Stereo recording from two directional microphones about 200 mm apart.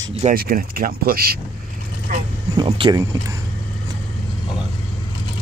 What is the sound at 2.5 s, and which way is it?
Speech, 25° right (ahead or behind).